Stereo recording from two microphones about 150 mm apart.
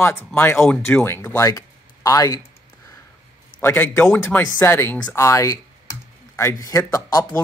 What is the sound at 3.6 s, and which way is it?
Speech, 15° left (ahead or behind).